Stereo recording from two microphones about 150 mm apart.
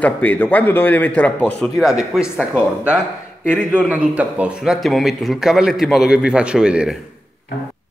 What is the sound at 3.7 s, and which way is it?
A man's voice, 5° right (ahead or behind).